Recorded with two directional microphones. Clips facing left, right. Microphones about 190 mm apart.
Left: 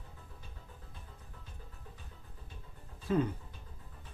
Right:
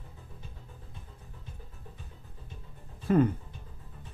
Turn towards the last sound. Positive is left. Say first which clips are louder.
# right 7 dB
turn(degrees=-55)  # may be behind; listen again after turning